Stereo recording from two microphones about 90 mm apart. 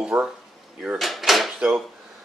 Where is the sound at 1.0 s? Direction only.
Centre (ahead or behind).